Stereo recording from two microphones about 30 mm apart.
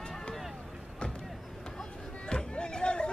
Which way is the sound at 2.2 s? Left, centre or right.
Left.